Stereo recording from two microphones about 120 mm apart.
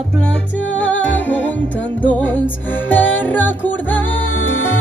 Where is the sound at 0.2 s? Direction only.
10° left (ahead or behind).